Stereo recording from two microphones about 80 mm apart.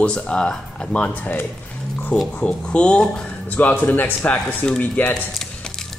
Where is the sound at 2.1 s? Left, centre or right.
Centre.